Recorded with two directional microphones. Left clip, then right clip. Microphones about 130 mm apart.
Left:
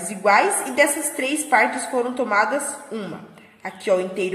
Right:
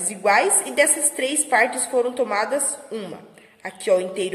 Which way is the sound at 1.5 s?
40° right (ahead or behind).